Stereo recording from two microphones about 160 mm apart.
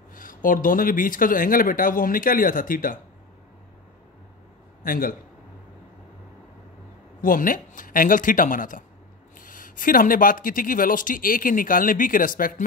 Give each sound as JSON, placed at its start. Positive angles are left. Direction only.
{"t": 0.1, "sound": "speech", "side_deg": 60}
{"t": 4.8, "sound": "a man's voice", "side_deg": 60}
{"t": 7.2, "sound": "speech", "side_deg": 60}